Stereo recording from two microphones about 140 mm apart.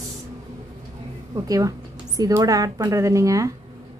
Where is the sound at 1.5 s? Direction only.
25° right (ahead or behind).